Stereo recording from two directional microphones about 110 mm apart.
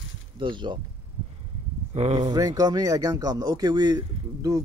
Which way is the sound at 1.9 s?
75° right (ahead or behind).